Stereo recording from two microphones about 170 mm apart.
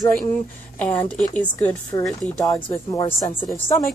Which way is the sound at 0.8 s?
10° left (ahead or behind).